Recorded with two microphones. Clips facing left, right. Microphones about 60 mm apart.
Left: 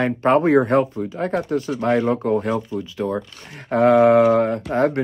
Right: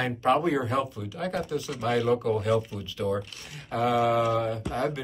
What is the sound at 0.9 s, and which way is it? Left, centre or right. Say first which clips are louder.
Speech: left 8 dB; left.